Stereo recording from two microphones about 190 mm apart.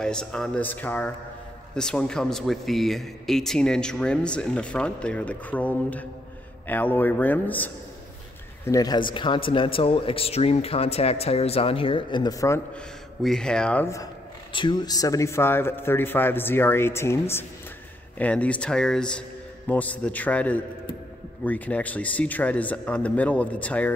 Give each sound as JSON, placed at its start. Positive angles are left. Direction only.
{"t": 0.0, "sound": "speech", "side_deg": 5}
{"t": 8.6, "sound": "a man's voice", "side_deg": 20}
{"t": 13.2, "sound": "speech", "side_deg": 5}
{"t": 14.5, "sound": "speech", "side_deg": 25}